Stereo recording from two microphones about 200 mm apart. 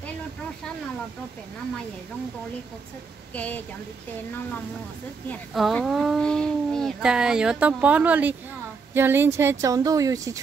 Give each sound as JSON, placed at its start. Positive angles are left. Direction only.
{"t": 3.3, "sound": "a woman's voice", "side_deg": 5}
{"t": 5.3, "sound": "a child's voice", "side_deg": 0}